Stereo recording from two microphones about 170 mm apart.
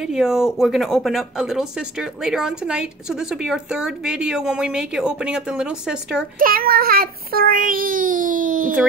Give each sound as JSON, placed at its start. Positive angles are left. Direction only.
{"t": 0.0, "sound": "speech", "side_deg": -5}
{"t": 6.4, "sound": "child singing", "side_deg": -60}